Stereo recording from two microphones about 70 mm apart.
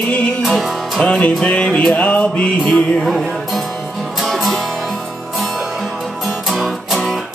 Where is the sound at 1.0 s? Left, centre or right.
Centre.